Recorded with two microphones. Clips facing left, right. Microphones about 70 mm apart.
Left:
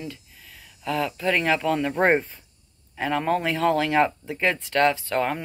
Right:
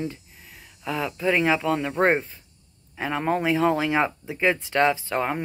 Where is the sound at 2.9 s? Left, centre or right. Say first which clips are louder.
Left 1 dB; centre.